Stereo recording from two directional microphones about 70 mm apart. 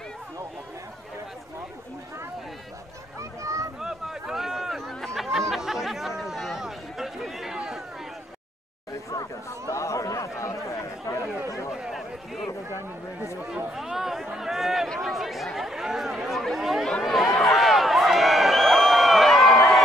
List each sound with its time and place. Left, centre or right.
3.2 s a sound: right
3.8 s a sound: centre
5.5 s chatter: centre
9.1 s chatter: left
11.7 s chatter: centre
13.7 s chatter: centre
14.3 s a sound: centre
15.0 s chatter: centre
17.0 s crowd: centre